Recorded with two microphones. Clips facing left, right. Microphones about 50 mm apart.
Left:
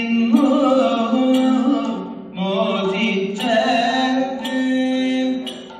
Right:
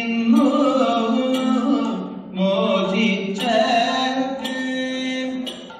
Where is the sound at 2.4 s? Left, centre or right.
Centre.